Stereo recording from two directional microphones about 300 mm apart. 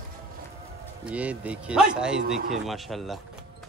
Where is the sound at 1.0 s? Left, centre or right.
Centre.